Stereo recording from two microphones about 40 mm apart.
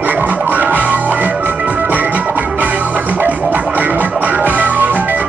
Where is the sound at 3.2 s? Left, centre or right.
Right.